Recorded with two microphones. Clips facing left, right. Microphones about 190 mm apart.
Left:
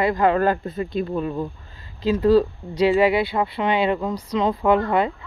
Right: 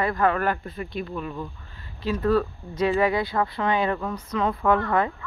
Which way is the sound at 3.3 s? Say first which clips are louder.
Left 2 dB; 15° left (ahead or behind).